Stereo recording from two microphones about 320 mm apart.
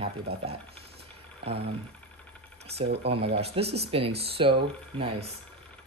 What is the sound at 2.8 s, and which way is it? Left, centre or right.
Speech, right.